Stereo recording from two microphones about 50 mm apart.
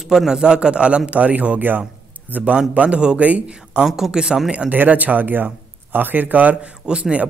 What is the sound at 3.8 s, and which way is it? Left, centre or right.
Speech, centre.